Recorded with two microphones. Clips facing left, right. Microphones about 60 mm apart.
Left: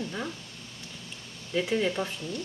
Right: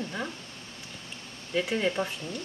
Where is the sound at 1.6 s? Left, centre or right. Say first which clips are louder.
Left 1 dB; centre.